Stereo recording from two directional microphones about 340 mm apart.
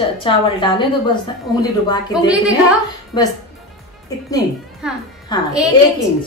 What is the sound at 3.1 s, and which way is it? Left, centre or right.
Speech, centre.